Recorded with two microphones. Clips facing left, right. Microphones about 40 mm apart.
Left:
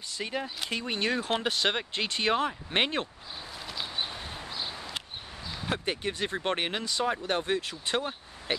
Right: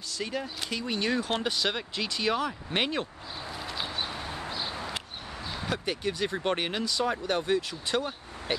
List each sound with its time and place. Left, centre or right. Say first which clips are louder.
0.1 s speech: even; left
1.1 s speech: even; centre
4.5 s a sound: right 1 dB; centre
5.7 s speech: even; left